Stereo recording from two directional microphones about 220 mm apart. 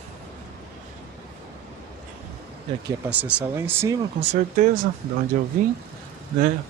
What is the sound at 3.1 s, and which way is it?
Speech, 5° right (ahead or behind).